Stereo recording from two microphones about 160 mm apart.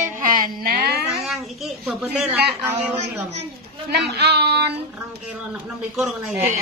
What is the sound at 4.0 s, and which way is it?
Speech, 90° right.